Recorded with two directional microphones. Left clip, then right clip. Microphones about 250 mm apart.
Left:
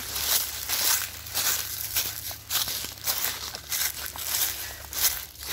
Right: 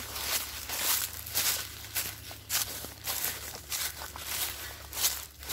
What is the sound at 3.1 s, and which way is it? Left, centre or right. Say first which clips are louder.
Crumpling: left 5 dB; left.